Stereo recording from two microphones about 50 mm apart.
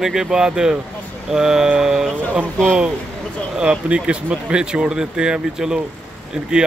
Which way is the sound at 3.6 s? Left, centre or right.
Centre.